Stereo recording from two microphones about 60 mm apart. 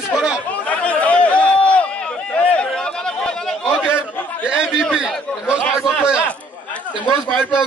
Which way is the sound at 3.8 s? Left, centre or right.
Centre.